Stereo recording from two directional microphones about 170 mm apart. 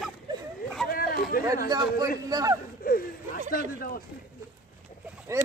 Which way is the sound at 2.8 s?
55° left (ahead or behind).